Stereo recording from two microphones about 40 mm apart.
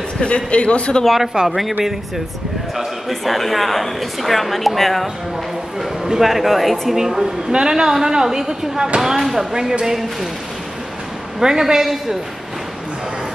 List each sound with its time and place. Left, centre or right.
0.2 s speech: left
1.0 s a woman's voice: centre
3.1 s a woman's voice: centre
6.0 s a woman's voice: centre
7.0 s speech: centre
11.3 s speech: centre